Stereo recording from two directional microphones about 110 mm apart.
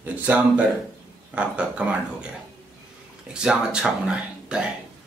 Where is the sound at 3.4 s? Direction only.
5° right (ahead or behind).